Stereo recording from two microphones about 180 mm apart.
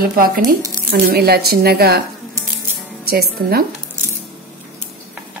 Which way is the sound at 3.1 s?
60° right (ahead or behind).